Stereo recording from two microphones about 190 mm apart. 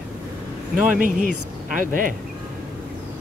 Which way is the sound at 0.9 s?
45° right (ahead or behind).